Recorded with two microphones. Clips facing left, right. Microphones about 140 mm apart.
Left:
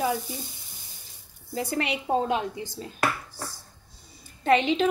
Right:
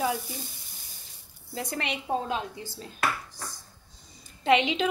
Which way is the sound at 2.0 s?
20° left (ahead or behind).